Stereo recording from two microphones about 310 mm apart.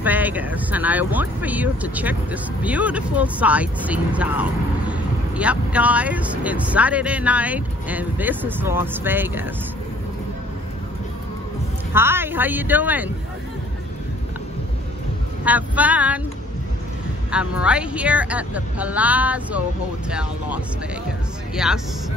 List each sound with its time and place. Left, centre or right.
0.0 s speech: centre
11.9 s speech: centre
15.4 s speech: centre
17.3 s speech: centre